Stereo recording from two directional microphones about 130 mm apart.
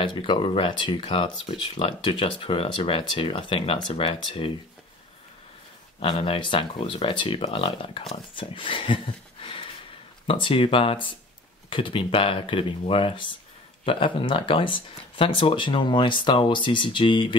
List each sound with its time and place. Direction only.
0.1 s speech: 40° left (ahead or behind)
5.9 s speech: 45° left (ahead or behind)